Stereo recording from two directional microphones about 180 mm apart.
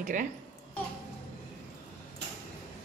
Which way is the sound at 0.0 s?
45° right (ahead or behind).